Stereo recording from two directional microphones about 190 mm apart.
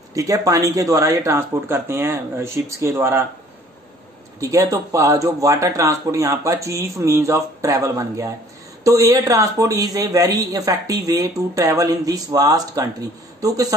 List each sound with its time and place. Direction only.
0.1 s speech: 15° right (ahead or behind)
4.4 s a woman's voice: 15° right (ahead or behind)